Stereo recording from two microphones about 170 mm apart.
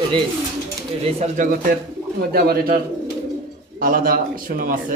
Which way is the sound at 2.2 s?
65° right (ahead or behind).